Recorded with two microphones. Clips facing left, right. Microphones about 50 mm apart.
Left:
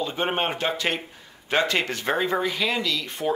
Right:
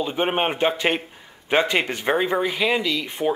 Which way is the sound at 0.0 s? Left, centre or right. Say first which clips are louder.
Right 3 dB; centre.